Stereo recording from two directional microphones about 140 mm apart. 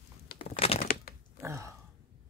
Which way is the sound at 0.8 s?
90° left.